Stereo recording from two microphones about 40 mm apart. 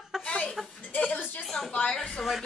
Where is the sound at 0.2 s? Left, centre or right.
Left.